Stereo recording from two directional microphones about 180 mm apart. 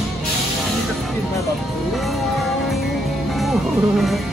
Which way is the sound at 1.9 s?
Centre (ahead or behind).